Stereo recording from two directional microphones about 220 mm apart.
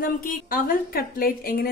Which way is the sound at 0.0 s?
40° left (ahead or behind).